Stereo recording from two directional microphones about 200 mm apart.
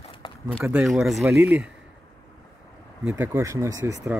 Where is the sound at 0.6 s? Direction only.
5° right (ahead or behind).